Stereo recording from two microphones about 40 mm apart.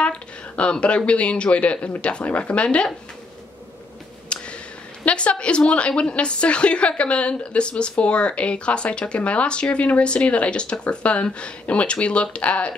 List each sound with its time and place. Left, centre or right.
0.0 s speech: left
4.3 s a sound: left
5.0 s a woman's voice: left